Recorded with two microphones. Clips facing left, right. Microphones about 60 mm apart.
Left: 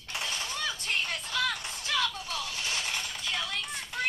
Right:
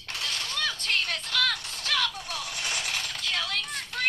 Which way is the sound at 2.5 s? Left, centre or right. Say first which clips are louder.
Right 4 dB; right.